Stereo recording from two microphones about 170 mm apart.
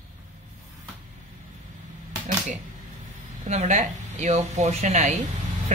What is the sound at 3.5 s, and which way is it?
Speech, 40° right (ahead or behind).